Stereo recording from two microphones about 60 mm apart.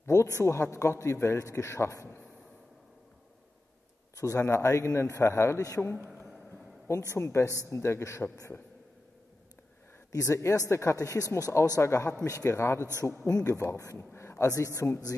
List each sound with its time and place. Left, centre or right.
0.0 s a man's voice: left
4.2 s speech: left
7.1 s a man's voice: left
10.1 s speech: left
11.8 s a man's voice: left
14.8 s speech: left